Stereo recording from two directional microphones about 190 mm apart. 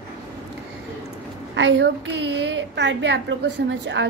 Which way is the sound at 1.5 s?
70° right (ahead or behind).